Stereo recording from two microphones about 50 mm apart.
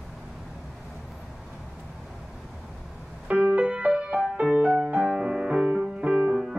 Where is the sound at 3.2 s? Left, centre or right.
Right; by 5.9 s centre.